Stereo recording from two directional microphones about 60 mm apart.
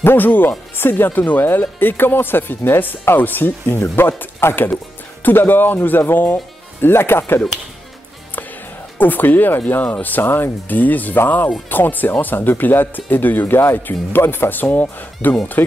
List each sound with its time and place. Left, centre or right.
0.0 s speech: left
8.9 s speech: left